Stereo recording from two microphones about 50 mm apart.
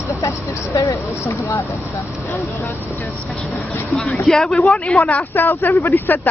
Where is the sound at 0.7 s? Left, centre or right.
Left.